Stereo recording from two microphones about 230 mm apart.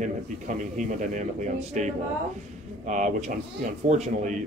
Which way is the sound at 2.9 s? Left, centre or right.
Right.